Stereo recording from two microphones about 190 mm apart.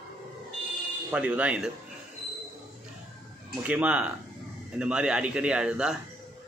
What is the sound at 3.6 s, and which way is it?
A man's voice, 5° right (ahead or behind).